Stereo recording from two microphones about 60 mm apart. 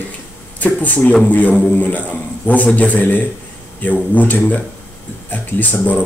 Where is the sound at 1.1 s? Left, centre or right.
Centre.